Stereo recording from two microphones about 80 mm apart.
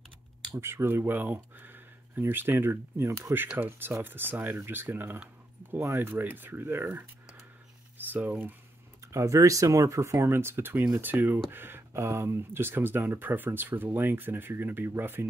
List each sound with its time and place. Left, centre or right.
0.6 s speech: right
3.5 s speech: right
8.1 s speech: right
9.0 s speech: right